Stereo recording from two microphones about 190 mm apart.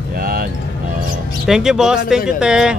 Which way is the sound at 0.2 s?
50° right (ahead or behind).